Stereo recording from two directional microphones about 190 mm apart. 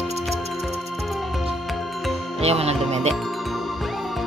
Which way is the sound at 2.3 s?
30° right (ahead or behind).